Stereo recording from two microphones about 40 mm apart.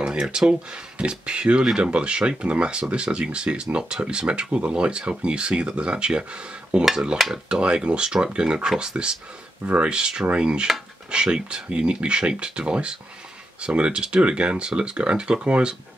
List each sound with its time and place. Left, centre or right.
0.0 s a sound: right
0.5 s speech: right
6.8 s dishes: centre
7.6 s speech: right